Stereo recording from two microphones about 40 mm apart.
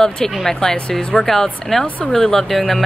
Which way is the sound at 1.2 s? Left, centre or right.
Centre.